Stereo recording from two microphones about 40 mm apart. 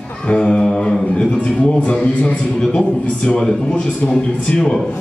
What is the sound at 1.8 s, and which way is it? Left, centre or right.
A man's voice, left.